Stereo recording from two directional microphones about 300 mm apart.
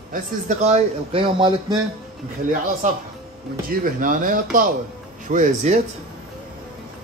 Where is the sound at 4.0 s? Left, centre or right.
Right.